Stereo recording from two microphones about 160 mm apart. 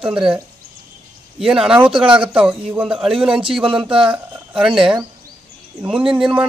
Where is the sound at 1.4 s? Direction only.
5° right (ahead or behind).